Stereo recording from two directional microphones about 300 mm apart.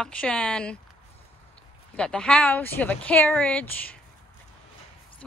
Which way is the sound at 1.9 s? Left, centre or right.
Centre.